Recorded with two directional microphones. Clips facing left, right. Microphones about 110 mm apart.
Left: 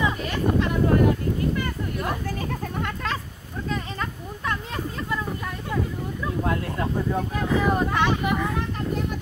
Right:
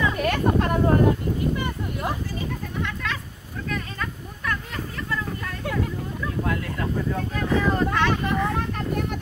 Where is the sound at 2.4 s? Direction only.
45° left (ahead or behind).